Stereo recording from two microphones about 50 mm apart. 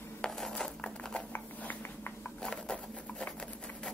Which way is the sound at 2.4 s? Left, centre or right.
Centre.